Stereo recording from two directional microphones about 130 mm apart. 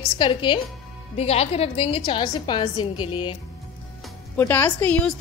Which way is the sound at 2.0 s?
35° left (ahead or behind).